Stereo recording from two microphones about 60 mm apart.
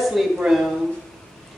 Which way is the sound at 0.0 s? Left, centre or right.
Centre.